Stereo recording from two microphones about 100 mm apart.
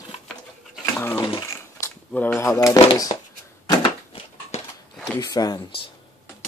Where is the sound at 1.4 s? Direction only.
30° left (ahead or behind).